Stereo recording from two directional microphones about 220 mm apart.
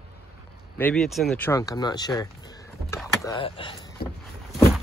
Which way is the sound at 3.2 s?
25° left (ahead or behind).